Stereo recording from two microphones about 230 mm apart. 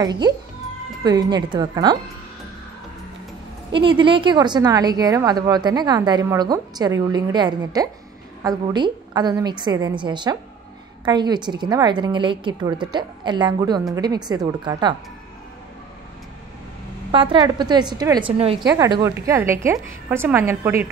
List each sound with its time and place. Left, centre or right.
1.0 s a woman's voice: centre
3.7 s a woman's voice: right
17.1 s a woman's voice: right